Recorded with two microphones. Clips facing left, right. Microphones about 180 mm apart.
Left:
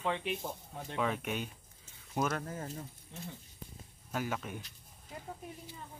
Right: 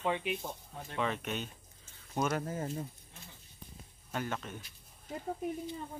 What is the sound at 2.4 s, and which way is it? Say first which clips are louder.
Speech: right 4 dB; 20° right (ahead or behind).